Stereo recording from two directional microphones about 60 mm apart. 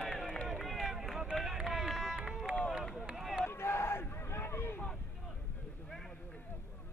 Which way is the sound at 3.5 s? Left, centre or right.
Left.